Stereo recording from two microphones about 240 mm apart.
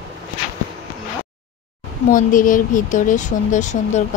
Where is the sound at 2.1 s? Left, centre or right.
Left.